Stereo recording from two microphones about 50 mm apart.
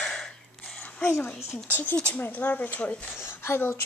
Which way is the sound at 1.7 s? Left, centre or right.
Left.